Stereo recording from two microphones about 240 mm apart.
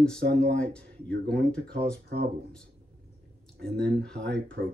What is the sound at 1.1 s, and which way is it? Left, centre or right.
Speech, right.